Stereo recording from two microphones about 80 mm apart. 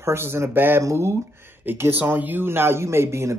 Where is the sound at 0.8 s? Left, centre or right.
Right.